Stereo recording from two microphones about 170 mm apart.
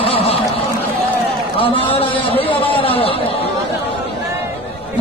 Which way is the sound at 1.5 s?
30° left (ahead or behind).